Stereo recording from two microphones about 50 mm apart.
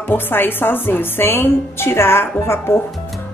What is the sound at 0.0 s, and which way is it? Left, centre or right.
Speech, left.